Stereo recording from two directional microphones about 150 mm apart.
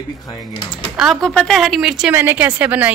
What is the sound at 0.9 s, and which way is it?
A man's voice, centre (ahead or behind).